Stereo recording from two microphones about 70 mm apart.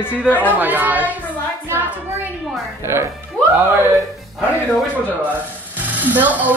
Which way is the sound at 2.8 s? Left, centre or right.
Right.